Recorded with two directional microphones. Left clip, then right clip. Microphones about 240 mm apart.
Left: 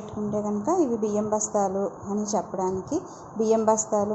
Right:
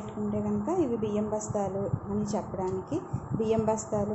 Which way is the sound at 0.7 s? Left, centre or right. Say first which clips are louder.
Left 5 dB; centre.